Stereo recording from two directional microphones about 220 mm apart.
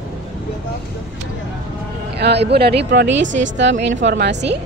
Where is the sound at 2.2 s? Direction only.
50° right (ahead or behind).